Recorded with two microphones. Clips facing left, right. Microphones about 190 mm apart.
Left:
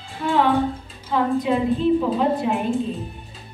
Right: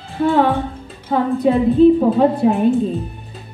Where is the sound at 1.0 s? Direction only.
50° right (ahead or behind).